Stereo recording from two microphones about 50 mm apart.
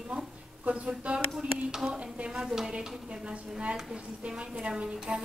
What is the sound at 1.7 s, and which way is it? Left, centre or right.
Speech, centre.